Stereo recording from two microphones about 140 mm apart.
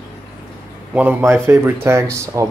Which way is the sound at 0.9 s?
10° right (ahead or behind).